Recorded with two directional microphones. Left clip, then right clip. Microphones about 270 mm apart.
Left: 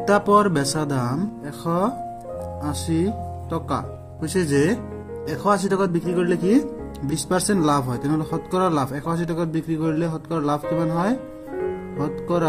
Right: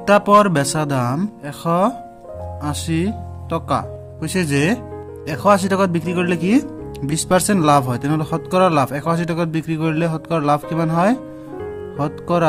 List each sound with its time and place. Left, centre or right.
0.3 s a man's voice: right